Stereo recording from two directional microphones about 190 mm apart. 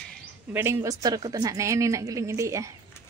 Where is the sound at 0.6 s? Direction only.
15° right (ahead or behind).